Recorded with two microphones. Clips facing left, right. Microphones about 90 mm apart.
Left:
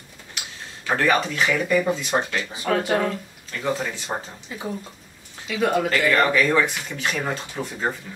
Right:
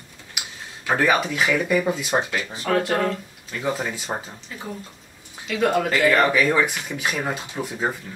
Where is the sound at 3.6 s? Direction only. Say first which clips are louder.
Even; 10° right (ahead or behind).